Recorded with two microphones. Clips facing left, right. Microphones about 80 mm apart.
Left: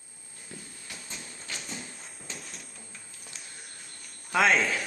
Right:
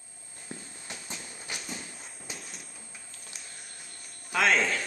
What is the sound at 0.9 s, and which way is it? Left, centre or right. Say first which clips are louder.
Train: right 2 dB; centre.